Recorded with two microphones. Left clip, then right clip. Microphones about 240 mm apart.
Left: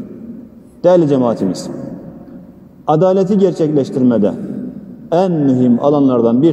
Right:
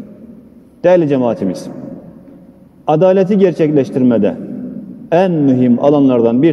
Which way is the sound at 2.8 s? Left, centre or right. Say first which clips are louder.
Right 2 dB; right.